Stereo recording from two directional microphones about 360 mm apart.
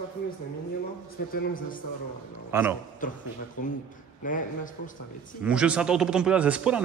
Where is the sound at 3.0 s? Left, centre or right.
Left.